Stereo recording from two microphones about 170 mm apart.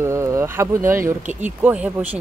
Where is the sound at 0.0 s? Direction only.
15° right (ahead or behind).